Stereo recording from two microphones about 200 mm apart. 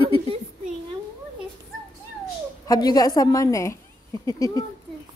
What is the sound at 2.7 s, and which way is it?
A woman's voice, 20° left (ahead or behind).